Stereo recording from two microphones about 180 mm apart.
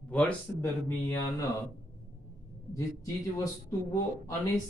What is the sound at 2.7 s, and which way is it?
A man's voice, 20° left (ahead or behind).